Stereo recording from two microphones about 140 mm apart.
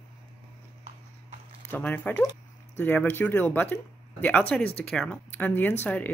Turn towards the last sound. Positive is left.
turn(degrees=10)  # may be behind; listen again after turning